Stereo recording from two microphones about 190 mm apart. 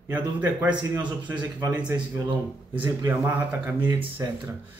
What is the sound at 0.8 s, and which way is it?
Speech, 25° right (ahead or behind).